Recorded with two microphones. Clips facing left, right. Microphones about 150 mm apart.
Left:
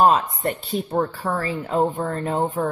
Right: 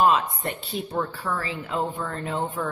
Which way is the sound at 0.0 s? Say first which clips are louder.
Left 3 dB; 45° left (ahead or behind).